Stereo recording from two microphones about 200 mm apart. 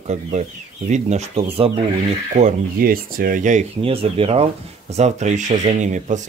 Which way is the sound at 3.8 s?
30° right (ahead or behind).